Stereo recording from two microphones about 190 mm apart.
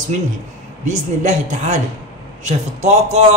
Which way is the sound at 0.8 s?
40° right (ahead or behind).